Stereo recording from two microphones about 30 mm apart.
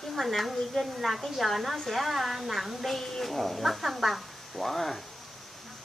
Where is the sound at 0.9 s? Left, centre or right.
Centre.